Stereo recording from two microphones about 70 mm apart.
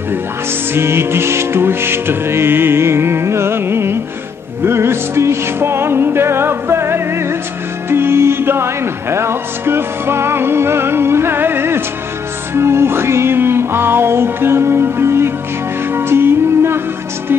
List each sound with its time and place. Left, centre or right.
0.7 s music: right